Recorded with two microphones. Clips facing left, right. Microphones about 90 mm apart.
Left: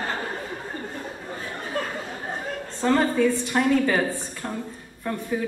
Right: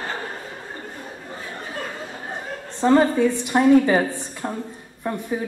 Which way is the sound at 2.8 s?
20° right (ahead or behind).